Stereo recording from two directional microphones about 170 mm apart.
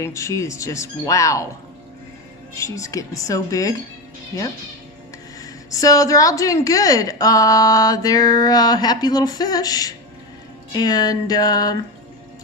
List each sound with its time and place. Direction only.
0.0 s speech: 15° left (ahead or behind)
2.5 s a woman's voice: 20° left (ahead or behind)